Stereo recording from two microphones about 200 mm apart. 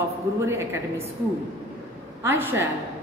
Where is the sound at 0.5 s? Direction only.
15° right (ahead or behind).